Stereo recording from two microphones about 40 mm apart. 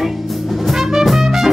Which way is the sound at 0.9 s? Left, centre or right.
Centre.